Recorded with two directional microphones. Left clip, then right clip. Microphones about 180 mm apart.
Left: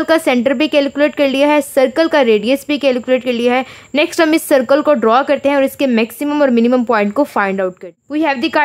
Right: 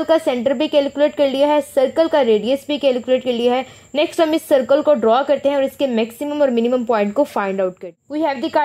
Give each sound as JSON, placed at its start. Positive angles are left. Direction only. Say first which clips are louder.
{"t": 0.0, "sound": "a woman's voice", "louder": "left 3 dB", "side_deg": 15}